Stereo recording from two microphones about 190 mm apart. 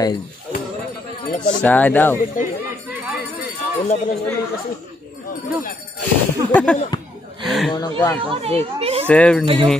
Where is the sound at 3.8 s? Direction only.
35° left (ahead or behind).